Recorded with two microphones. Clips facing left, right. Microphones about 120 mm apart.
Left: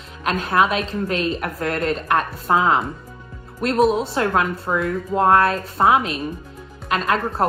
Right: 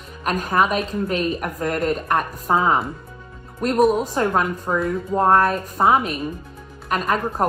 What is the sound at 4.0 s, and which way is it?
A woman's voice, 15° right (ahead or behind).